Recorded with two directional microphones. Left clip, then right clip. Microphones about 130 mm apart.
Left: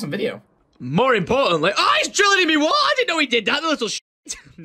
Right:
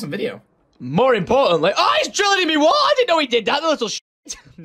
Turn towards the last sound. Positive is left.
turn(degrees=-15)  # may be behind; listen again after turning